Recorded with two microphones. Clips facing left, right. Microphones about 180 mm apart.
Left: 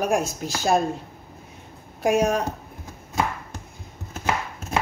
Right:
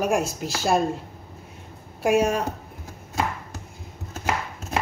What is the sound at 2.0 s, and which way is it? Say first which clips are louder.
Speech: even; 5° right (ahead or behind).